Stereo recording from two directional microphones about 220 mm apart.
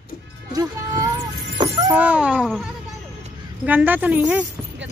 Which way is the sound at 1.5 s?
20° right (ahead or behind).